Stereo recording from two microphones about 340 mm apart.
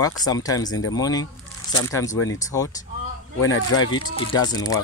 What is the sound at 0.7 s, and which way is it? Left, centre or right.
Speech, left.